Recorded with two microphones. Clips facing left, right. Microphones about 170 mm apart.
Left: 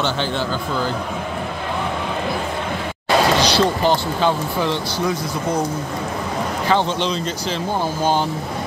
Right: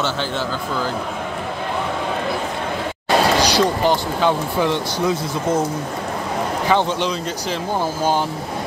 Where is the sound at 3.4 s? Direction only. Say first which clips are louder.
Even; 10° right (ahead or behind).